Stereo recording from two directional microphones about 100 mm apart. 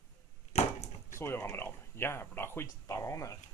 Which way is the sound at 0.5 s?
90° left.